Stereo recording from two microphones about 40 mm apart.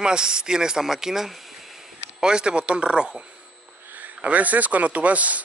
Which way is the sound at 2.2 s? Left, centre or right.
Right.